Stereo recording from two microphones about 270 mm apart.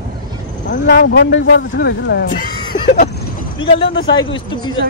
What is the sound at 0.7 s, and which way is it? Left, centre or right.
Speech, left.